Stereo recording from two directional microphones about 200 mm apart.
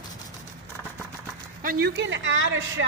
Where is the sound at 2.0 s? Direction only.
65° right (ahead or behind).